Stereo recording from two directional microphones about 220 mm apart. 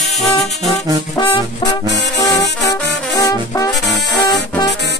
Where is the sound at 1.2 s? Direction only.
20° left (ahead or behind).